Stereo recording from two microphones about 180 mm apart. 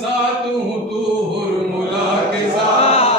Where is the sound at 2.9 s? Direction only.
35° left (ahead or behind).